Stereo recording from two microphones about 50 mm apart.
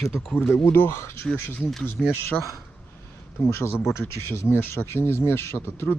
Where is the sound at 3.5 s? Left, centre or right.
Left.